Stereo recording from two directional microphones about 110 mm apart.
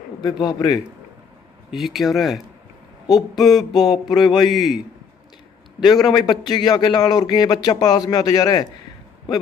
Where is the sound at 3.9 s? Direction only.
40° left (ahead or behind).